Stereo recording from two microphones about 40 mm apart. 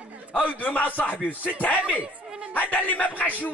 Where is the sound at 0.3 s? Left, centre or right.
Left.